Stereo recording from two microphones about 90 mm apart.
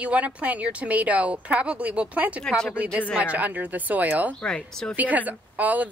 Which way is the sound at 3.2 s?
15° right (ahead or behind).